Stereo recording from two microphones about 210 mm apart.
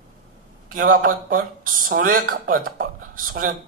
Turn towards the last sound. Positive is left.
turn(degrees=-40)  # may be behind; listen again after turning